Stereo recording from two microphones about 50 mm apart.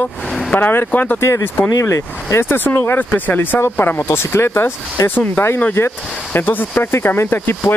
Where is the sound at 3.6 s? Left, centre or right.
Left.